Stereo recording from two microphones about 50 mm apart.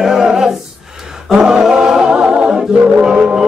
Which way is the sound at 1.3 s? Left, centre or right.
Centre.